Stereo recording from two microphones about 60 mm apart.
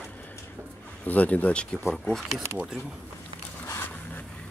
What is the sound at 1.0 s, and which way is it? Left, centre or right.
Speech, left.